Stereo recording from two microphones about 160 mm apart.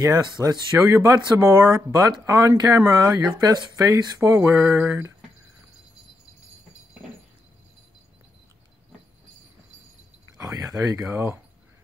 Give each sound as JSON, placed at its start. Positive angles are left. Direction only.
{"t": 0.4, "sound": "speech", "side_deg": -20}
{"t": 10.8, "sound": "speech", "side_deg": -15}